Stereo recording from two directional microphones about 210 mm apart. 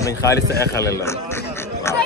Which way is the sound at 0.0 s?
15° left (ahead or behind).